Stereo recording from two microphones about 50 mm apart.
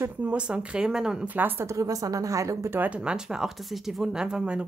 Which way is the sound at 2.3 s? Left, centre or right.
Right.